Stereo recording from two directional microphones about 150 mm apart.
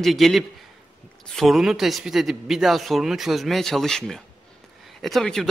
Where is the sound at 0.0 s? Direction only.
Centre (ahead or behind).